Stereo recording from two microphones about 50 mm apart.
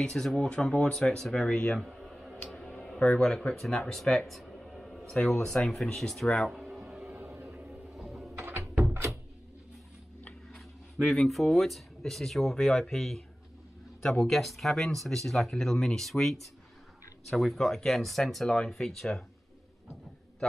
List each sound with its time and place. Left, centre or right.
0.0 s speech: centre
2.0 s a sound: centre
2.4 s music: centre
3.3 s speech: centre
4.3 s a sound: centre
5.3 s speech: centre
7.6 s music: centre
8.4 s music: right
8.9 s a sound: right
11.0 s speech: centre